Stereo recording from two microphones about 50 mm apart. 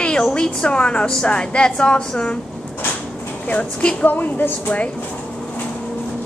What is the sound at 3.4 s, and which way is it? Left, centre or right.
Speech, left.